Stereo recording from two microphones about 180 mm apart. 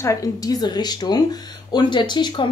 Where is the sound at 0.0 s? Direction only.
20° left (ahead or behind).